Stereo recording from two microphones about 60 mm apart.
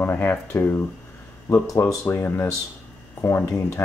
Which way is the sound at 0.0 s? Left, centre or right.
Left.